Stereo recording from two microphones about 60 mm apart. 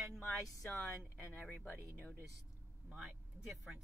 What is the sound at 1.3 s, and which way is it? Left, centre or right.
Speech, left.